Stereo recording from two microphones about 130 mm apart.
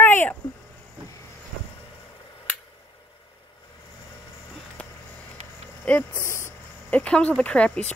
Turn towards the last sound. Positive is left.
turn(degrees=10)  # may be behind; listen again after turning